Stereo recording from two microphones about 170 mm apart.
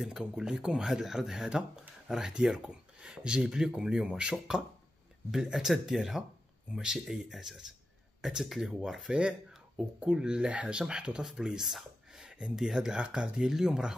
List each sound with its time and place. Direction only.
0.0 s speech: 5° right (ahead or behind)